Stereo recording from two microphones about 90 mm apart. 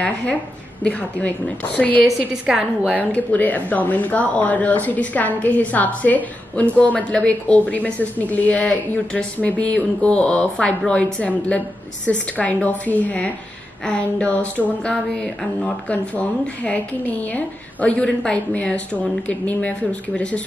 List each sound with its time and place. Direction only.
0.0 s speech: 15° left (ahead or behind)
1.8 s speech: 20° left (ahead or behind)
2.4 s a woman's voice: 10° right (ahead or behind)
2.9 s speech: 15° left (ahead or behind)